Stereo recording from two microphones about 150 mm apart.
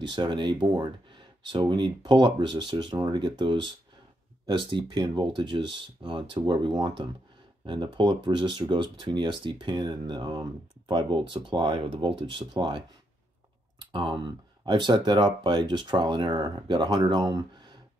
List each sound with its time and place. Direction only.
0.0 s speech: 30° right (ahead or behind)